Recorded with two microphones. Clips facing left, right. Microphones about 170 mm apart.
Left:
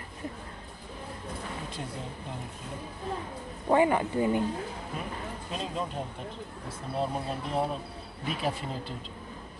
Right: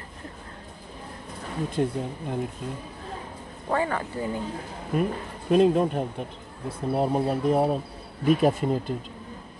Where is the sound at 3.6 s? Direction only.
15° left (ahead or behind).